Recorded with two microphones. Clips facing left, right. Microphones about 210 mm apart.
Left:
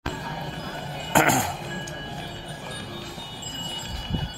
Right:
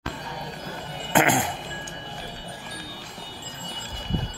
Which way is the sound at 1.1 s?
Centre (ahead or behind).